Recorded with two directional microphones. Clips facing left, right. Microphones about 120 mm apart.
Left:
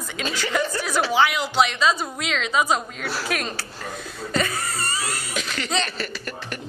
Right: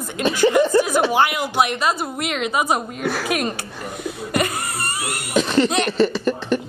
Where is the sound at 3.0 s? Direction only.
55° right (ahead or behind).